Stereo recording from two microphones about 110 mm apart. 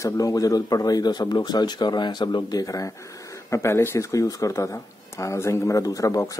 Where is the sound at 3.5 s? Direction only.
20° left (ahead or behind).